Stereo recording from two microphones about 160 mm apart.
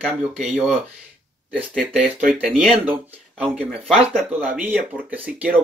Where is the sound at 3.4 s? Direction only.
5° left (ahead or behind).